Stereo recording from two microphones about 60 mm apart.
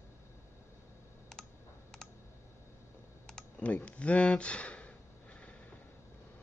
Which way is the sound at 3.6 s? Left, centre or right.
Left.